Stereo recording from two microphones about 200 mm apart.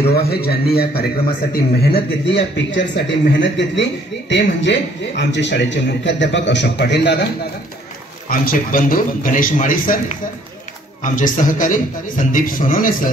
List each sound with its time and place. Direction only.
0.1 s a man's voice: 50° left (ahead or behind)
8.3 s a man's voice: 45° left (ahead or behind)
11.0 s a man's voice: 40° left (ahead or behind)